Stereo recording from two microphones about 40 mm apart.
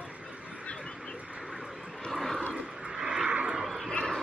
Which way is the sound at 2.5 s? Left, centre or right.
Right.